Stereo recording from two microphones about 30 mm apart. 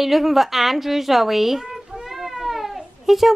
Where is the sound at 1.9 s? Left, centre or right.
Centre.